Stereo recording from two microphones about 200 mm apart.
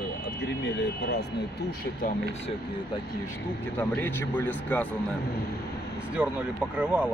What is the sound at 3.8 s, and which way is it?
Speech, 10° left (ahead or behind).